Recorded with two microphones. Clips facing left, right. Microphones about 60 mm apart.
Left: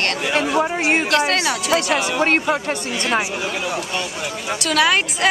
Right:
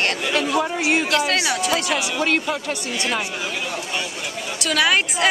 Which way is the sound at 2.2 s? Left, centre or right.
Left.